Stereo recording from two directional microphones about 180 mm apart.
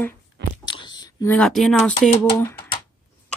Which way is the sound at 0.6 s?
25° left (ahead or behind).